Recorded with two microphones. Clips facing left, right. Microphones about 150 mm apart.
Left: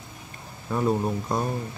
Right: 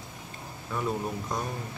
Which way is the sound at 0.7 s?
40° left (ahead or behind).